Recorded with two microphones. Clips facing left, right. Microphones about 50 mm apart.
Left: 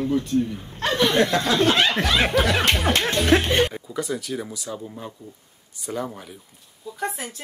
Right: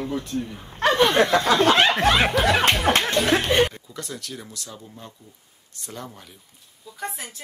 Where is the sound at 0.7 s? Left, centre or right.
Right.